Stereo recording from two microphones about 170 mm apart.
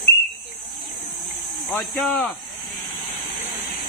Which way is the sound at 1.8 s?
Centre (ahead or behind).